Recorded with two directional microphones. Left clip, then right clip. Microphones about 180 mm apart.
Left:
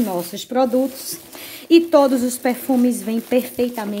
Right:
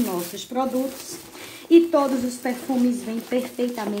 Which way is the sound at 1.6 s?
65° left (ahead or behind).